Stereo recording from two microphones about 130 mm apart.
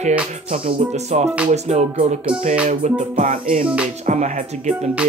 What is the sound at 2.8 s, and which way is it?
Music, 60° right (ahead or behind).